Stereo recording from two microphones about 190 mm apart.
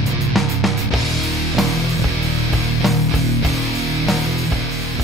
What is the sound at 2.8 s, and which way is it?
Music, centre (ahead or behind).